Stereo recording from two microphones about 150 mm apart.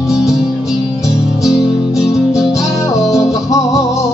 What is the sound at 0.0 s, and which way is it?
Music, 20° left (ahead or behind).